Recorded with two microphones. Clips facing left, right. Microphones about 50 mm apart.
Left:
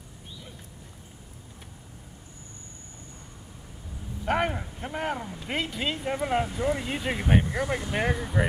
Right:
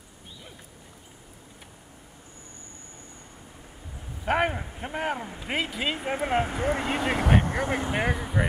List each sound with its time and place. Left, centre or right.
4.2 s speech: centre
5.9 s speech: right
6.4 s speech: right
7.5 s speech: right
7.9 s speech: centre